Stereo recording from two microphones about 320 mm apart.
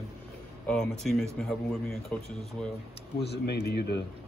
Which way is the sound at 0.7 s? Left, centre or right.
Centre.